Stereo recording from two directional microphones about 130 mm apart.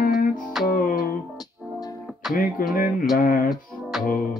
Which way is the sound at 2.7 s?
90° left.